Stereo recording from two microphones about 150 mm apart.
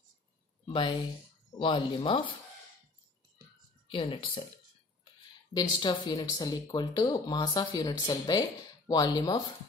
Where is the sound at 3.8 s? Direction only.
35° left (ahead or behind).